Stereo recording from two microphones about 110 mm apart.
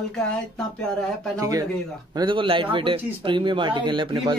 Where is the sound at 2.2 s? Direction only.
50° right (ahead or behind).